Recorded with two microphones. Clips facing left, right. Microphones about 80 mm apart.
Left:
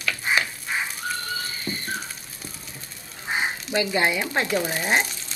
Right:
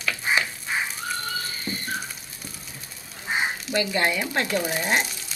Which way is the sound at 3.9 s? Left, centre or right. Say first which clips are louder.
Left 1 dB; centre.